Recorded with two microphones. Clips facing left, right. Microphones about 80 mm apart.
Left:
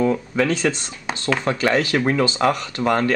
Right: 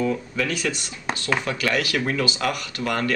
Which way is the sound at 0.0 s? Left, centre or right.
Left.